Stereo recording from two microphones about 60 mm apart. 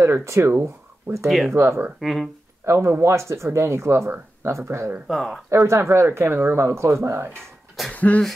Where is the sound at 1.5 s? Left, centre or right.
Right.